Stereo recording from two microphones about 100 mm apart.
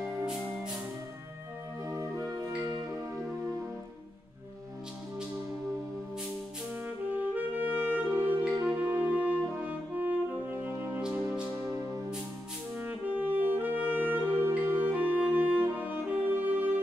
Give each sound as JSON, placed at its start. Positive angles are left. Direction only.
{"t": 1.9, "sound": "music", "side_deg": -30}
{"t": 7.2, "sound": "saxophone", "side_deg": -15}
{"t": 8.6, "sound": "french horn", "side_deg": -15}
{"t": 12.8, "sound": "brass instrument", "side_deg": -15}